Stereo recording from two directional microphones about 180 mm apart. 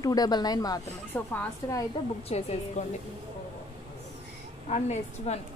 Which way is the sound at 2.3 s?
35° left (ahead or behind).